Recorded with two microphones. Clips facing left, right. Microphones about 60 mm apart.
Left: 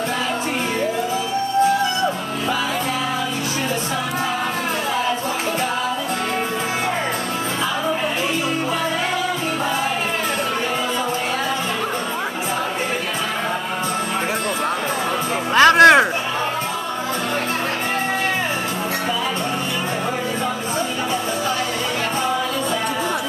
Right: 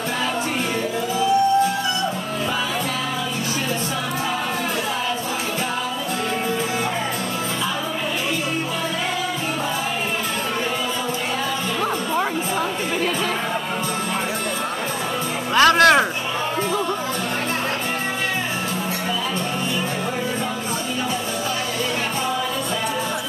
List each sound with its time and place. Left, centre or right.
15.5 s music: left